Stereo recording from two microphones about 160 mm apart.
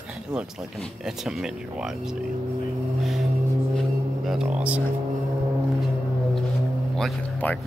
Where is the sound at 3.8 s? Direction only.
Centre (ahead or behind).